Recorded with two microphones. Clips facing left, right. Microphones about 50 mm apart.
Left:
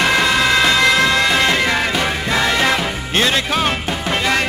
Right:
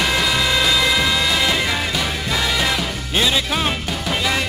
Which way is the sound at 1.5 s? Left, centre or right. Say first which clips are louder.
Left 4 dB; left.